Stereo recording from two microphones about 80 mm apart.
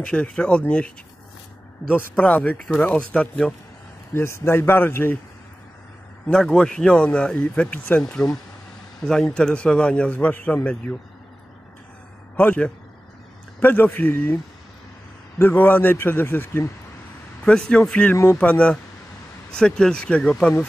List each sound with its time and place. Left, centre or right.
0.0 s a man's voice: centre
2.0 s a man's voice: centre
4.1 s a man's voice: left
6.3 s a man's voice: centre
12.4 s a man's voice: centre
17.5 s a man's voice: centre
18.1 s speech: left
18.4 s a man's voice: centre